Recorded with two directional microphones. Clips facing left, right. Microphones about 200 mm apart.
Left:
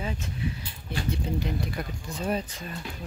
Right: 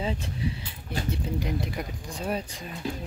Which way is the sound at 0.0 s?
25° right (ahead or behind).